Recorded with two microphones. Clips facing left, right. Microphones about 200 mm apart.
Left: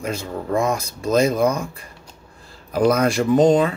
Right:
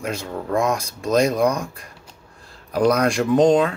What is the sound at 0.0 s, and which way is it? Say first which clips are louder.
Speech: left 1 dB; centre (ahead or behind).